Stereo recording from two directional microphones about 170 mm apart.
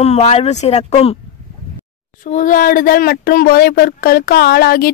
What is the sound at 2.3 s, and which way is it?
Speech, 50° left (ahead or behind).